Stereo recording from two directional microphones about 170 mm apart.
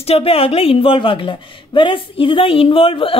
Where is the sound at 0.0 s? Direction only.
35° left (ahead or behind).